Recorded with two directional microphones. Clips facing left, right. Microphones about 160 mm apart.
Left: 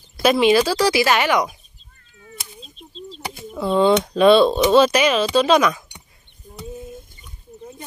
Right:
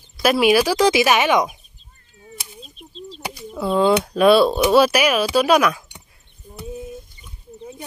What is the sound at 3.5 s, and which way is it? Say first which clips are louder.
Speech: left 1 dB; 5° right (ahead or behind).